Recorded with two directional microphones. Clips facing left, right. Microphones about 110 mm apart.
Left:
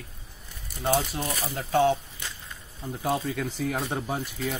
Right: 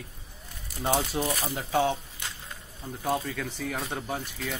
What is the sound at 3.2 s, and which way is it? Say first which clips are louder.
Speech: left 4 dB; 15° left (ahead or behind).